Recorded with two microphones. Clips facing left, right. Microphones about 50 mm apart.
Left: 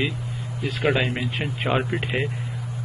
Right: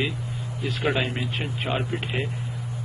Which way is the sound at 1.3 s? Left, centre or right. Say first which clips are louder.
Left 4 dB; centre.